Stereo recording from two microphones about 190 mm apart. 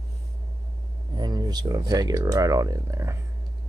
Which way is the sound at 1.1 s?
20° right (ahead or behind).